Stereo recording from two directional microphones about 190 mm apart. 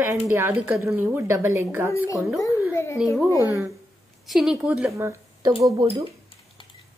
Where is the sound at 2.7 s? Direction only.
15° left (ahead or behind).